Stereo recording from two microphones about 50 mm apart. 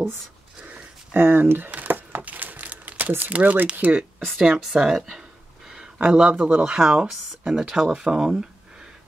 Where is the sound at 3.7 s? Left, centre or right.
Right.